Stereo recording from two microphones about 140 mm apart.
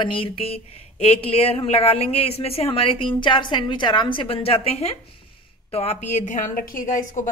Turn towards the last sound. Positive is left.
turn(degrees=70)  # may be behind; listen again after turning